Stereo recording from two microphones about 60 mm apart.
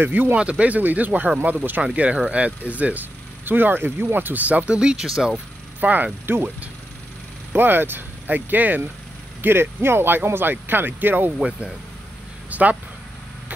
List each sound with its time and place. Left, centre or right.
0.0 s speech: right; by 5.4 s centre
5.8 s mechanisms: right
6.2 s speech: right
12.4 s speech: right